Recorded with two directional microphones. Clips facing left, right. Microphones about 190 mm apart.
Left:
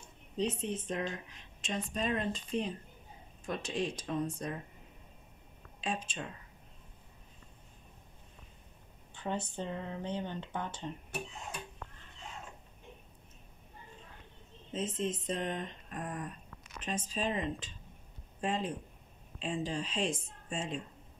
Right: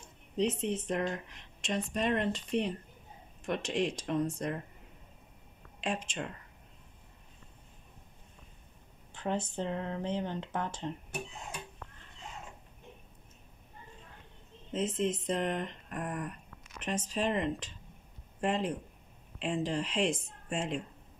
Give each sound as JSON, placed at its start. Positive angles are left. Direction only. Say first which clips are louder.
{"t": 0.4, "sound": "speech", "louder": "right 3 dB", "side_deg": -80}
{"t": 5.9, "sound": "speech", "louder": "right 2 dB", "side_deg": -80}
{"t": 9.2, "sound": "speech", "louder": "right 3 dB", "side_deg": -90}
{"t": 14.7, "sound": "speech", "louder": "right 4 dB", "side_deg": -70}
{"t": 16.8, "sound": "speech", "louder": "right 3 dB", "side_deg": -75}
{"t": 19.4, "sound": "speech", "louder": "right 3 dB", "side_deg": -75}